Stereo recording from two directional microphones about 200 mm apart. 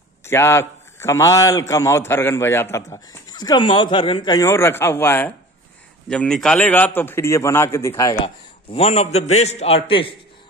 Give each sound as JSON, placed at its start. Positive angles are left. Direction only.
{"t": 0.2, "sound": "a man's voice", "side_deg": 15}
{"t": 8.7, "sound": "a man's voice", "side_deg": 30}